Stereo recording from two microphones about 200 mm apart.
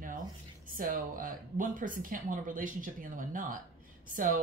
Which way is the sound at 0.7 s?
45° right (ahead or behind).